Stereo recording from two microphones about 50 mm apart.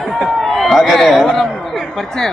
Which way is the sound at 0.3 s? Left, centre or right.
Centre.